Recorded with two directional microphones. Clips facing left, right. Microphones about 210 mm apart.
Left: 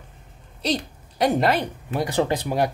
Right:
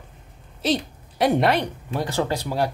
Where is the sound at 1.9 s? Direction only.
15° left (ahead or behind).